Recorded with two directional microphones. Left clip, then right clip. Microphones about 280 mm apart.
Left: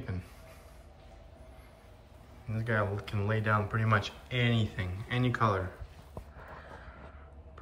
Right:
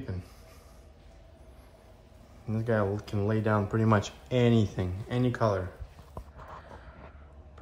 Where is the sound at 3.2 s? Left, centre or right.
Centre.